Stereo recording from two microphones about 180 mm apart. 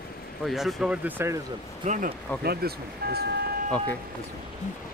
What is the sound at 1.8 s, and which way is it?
Speech, 45° right (ahead or behind).